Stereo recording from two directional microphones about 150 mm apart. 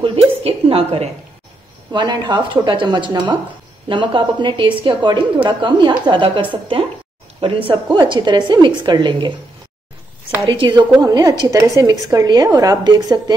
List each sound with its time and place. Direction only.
0.0 s a sound: 40° right (ahead or behind)
1.9 s a woman's voice: 30° right (ahead or behind)
10.4 s a woman's voice: 30° right (ahead or behind)